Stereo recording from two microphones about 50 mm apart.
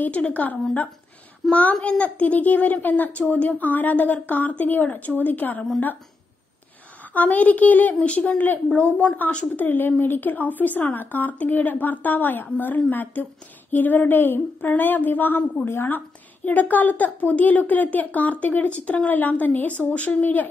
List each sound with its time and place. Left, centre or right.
0.2 s a woman's voice: left
7.2 s a woman's voice: left
9.6 s speech: left
16.4 s a woman's voice: left
20.2 s speech: left